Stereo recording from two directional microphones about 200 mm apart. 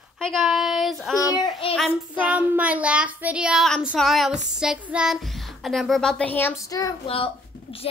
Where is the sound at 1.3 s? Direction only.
25° left (ahead or behind).